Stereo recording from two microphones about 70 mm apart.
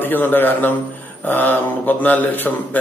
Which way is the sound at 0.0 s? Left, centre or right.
Left.